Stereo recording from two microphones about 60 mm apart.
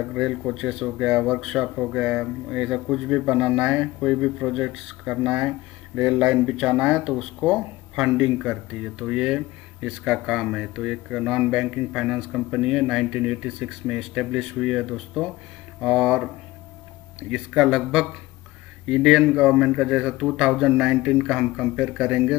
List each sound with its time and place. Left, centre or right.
0.2 s speech: centre